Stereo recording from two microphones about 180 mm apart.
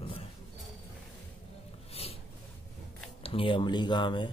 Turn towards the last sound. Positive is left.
turn(degrees=25)  # may be behind; listen again after turning